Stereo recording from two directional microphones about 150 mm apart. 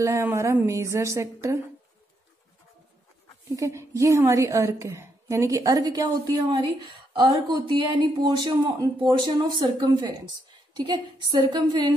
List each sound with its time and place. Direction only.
0.0 s speech: 20° right (ahead or behind)
3.4 s a woman's voice: 20° right (ahead or behind)